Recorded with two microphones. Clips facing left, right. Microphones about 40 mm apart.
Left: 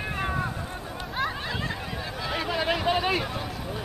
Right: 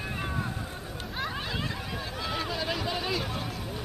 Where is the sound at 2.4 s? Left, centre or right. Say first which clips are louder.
Left 6 dB; left.